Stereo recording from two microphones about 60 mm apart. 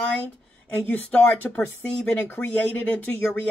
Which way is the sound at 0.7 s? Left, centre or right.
Left.